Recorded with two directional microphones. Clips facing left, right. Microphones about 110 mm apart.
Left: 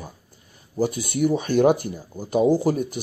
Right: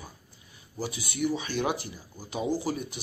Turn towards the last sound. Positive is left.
turn(degrees=50)  # may be behind; listen again after turning